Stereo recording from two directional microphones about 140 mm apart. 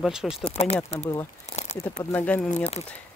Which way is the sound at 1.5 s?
55° left (ahead or behind).